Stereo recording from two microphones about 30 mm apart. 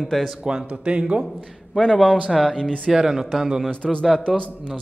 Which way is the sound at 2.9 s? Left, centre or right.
Centre.